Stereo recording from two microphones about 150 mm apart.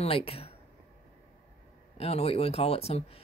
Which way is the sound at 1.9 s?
40° left (ahead or behind).